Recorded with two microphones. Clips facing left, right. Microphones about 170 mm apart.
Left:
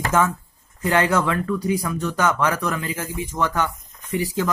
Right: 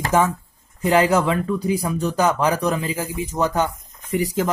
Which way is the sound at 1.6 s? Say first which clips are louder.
Right 2 dB; 30° right (ahead or behind).